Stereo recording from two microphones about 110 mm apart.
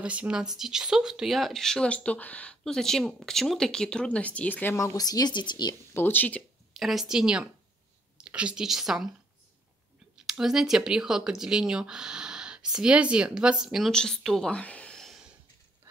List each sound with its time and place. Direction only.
0.0 s speech: 10° right (ahead or behind); by 5.8 s 45° left (ahead or behind)
5.9 s speech: 20° left (ahead or behind)
6.7 s a woman's voice: centre (ahead or behind)
10.1 s speech: 5° right (ahead or behind)